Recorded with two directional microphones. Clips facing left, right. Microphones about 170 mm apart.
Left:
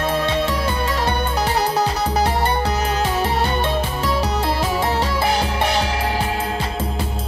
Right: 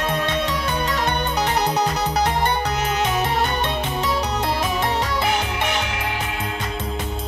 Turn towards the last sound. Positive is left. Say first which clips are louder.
# left 5 dB
turn(degrees=35)  # may be behind; listen again after turning